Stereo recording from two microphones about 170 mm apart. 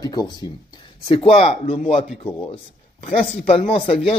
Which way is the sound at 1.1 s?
35° left (ahead or behind).